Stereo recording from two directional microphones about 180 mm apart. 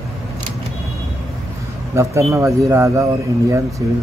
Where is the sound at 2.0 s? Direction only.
15° right (ahead or behind).